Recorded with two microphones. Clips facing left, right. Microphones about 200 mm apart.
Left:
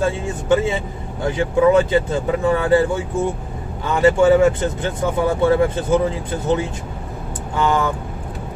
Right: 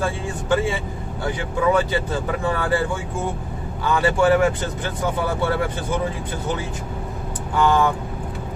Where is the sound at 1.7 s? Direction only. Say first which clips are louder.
Left 5 dB; 25° left (ahead or behind).